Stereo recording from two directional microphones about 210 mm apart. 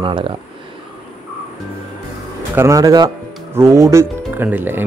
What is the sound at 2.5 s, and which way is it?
Speech, 15° right (ahead or behind).